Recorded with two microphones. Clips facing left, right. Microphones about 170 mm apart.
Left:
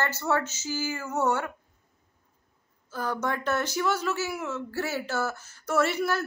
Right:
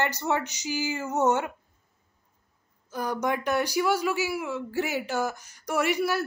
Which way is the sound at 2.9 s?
15° right (ahead or behind).